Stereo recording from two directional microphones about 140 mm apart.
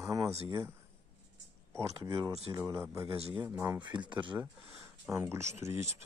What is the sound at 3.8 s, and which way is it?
Speech, 35° right (ahead or behind).